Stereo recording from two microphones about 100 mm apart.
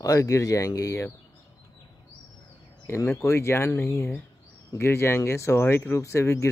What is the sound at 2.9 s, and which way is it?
Speech, 30° left (ahead or behind).